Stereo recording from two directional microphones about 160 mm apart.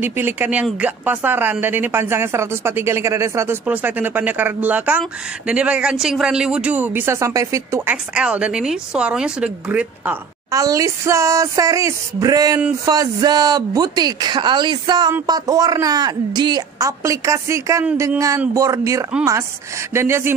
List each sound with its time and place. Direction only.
0.0 s speech: 15° right (ahead or behind)
10.5 s speech: 20° right (ahead or behind)